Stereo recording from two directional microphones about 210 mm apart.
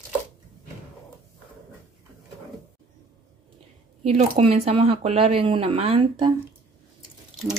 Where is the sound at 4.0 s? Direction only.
30° right (ahead or behind).